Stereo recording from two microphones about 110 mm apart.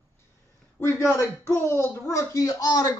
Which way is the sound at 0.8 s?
25° left (ahead or behind).